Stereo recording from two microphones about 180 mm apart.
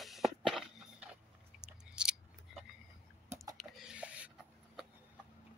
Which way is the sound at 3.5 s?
Centre (ahead or behind).